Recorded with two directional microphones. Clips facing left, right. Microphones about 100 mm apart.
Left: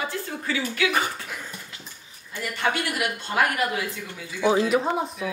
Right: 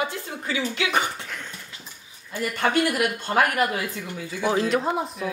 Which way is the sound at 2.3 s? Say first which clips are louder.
Right 2 dB; 45° right (ahead or behind).